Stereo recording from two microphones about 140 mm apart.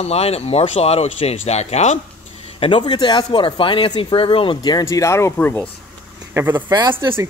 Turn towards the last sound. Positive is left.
turn(degrees=-30)  # may be behind; listen again after turning